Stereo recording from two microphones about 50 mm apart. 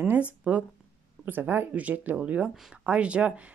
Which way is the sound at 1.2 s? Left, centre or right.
Right.